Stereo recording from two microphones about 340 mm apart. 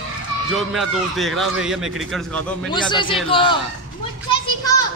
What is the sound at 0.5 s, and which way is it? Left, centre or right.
Speech, centre.